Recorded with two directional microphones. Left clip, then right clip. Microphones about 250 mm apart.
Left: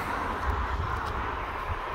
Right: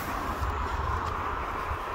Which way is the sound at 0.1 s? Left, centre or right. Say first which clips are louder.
Even; left.